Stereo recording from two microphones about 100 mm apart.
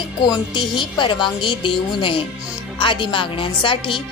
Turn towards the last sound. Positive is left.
turn(degrees=55)  # may be behind; listen again after turning